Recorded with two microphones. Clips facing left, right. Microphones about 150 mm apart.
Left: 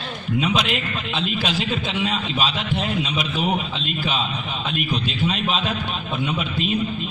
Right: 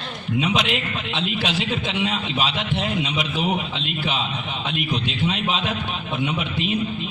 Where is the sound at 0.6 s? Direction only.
80° right.